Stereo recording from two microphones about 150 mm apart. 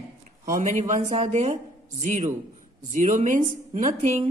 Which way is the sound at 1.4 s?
55° right (ahead or behind).